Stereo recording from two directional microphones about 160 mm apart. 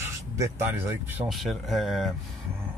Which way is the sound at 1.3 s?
Centre (ahead or behind).